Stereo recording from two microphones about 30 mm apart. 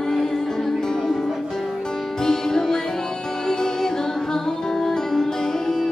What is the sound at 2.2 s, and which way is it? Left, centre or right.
Music, centre.